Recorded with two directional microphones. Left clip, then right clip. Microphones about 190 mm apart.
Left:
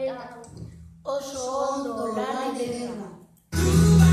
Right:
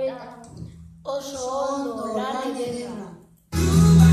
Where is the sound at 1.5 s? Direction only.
15° right (ahead or behind).